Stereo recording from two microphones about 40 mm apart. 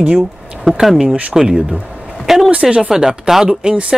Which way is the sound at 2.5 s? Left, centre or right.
Right.